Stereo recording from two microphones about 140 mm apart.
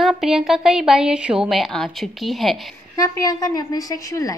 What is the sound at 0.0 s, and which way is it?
A woman's voice, centre (ahead or behind).